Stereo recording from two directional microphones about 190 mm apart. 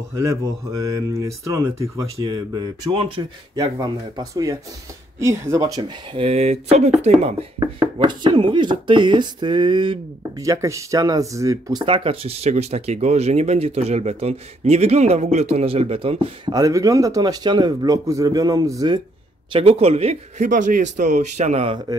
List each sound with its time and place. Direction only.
0.1 s speech: 15° right (ahead or behind)
16.6 s speech: 15° right (ahead or behind)
19.5 s a man's voice: 30° right (ahead or behind)